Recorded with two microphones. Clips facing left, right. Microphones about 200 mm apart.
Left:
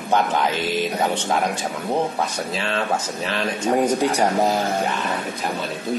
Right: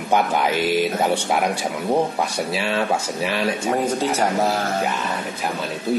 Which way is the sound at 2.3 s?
10° right (ahead or behind).